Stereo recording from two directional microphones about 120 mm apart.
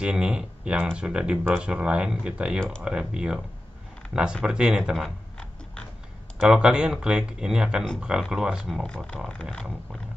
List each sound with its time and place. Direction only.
0.0 s speech: 5° right (ahead or behind)
6.4 s speech: 5° right (ahead or behind)
8.8 s speech: 5° left (ahead or behind)